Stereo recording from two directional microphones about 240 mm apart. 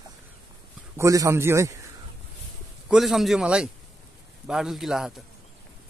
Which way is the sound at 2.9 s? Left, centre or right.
Centre.